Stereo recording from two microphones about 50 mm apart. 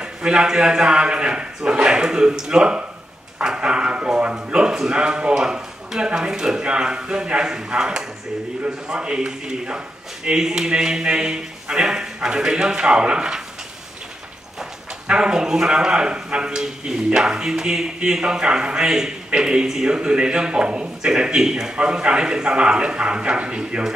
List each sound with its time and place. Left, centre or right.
0.0 s a man's voice: centre
15.0 s a man's voice: centre